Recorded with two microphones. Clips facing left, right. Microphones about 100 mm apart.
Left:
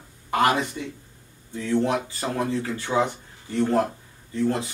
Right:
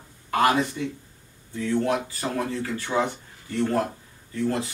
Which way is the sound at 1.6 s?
20° left (ahead or behind).